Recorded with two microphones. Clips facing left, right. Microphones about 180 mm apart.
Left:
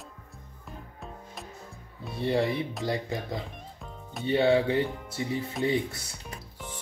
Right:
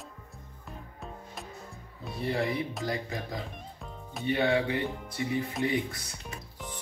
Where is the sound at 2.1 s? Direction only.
25° left (ahead or behind).